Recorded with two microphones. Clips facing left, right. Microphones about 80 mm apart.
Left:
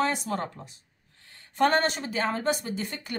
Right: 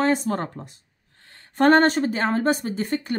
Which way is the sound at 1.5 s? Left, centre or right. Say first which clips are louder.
Right 7 dB; right.